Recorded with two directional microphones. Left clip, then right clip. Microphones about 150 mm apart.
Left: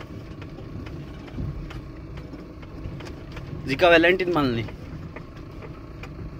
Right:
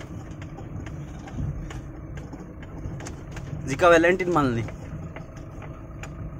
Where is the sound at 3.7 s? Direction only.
20° right (ahead or behind).